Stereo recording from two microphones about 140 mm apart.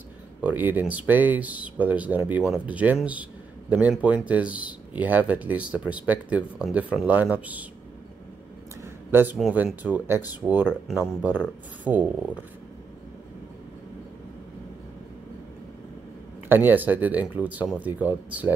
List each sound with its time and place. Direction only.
0.4 s speech: 10° right (ahead or behind)
8.8 s a sound: 15° right (ahead or behind)
9.4 s speech: 5° right (ahead or behind)
16.4 s speech: 15° right (ahead or behind)